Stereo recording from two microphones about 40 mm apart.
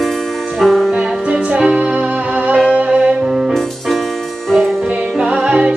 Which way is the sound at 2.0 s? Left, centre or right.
Right.